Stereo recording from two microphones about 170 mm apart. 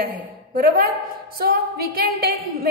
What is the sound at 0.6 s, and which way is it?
A woman's voice, 60° right (ahead or behind).